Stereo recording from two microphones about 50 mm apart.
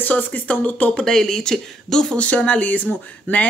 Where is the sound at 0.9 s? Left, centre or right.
Centre.